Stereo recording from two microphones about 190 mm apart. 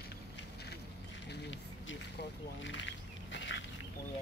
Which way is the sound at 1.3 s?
70° left (ahead or behind).